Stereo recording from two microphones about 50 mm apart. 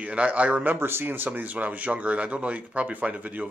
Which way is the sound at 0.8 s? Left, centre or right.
Right.